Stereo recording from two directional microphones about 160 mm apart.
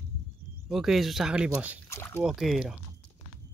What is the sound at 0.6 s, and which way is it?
Speech, centre (ahead or behind).